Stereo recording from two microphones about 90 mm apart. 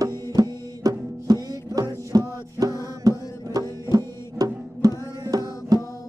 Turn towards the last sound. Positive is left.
turn(degrees=-40)  # may be behind; listen again after turning